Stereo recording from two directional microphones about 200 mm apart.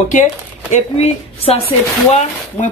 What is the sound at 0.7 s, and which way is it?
Speech, 30° left (ahead or behind).